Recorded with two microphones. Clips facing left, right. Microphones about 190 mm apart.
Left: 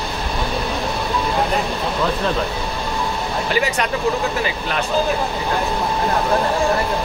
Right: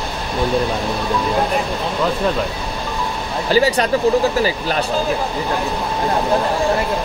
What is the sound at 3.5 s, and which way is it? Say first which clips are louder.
Speech: right 7 dB; 35° right (ahead or behind).